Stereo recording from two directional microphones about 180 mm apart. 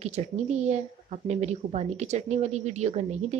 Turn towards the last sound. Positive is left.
turn(degrees=-40)  # may be behind; listen again after turning